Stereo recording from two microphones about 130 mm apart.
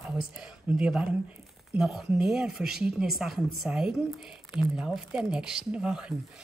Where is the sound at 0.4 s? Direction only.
5° right (ahead or behind).